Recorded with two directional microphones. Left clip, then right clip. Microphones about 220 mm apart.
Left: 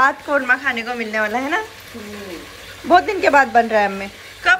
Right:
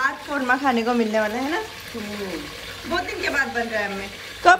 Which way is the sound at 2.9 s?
Centre (ahead or behind).